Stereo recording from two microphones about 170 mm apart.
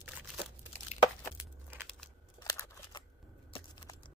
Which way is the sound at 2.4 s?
25° left (ahead or behind).